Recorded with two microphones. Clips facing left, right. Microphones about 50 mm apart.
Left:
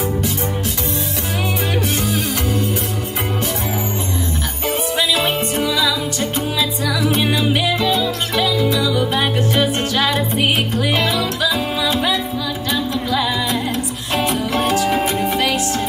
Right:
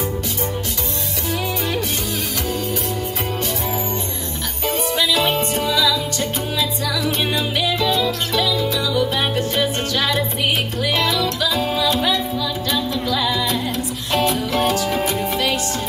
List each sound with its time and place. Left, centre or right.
4.7 s music: centre
14.4 s music: left